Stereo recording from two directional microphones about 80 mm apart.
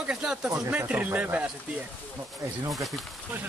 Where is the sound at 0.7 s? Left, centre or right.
Right.